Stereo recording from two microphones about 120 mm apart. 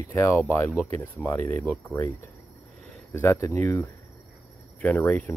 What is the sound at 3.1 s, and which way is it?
Speech, 20° left (ahead or behind).